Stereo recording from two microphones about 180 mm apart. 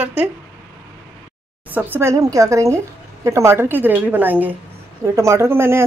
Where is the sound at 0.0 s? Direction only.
10° right (ahead or behind).